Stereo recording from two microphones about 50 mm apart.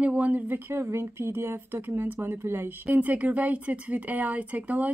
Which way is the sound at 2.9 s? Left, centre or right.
Right.